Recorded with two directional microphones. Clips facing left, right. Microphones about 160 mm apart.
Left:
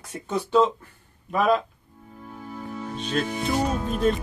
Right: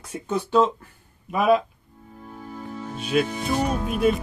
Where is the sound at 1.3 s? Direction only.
10° right (ahead or behind).